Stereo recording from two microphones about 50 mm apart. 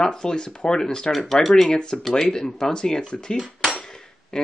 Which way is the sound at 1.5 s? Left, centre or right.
Centre.